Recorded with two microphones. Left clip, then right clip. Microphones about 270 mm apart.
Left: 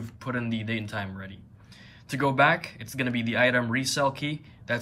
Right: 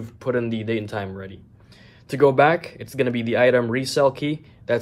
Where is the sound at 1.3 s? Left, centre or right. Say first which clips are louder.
Right 4 dB; right.